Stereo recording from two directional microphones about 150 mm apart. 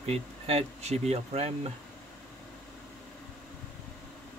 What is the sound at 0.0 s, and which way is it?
Speech, 40° right (ahead or behind).